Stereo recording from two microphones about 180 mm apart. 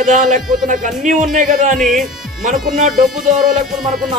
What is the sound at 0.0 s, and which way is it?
Speech, 45° right (ahead or behind).